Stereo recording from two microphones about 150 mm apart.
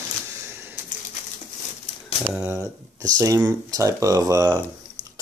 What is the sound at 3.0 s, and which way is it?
Speech, 20° right (ahead or behind).